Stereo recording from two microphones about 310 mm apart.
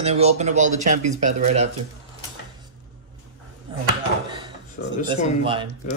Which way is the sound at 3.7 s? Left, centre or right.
Centre.